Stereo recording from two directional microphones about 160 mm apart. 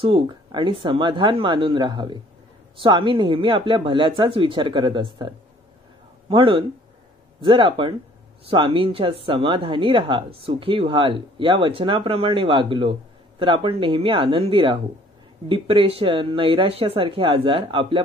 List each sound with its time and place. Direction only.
0.0 s speech: 30° right (ahead or behind)